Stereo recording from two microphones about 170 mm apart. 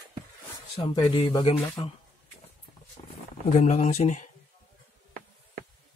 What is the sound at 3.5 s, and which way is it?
Speech, 45° left (ahead or behind).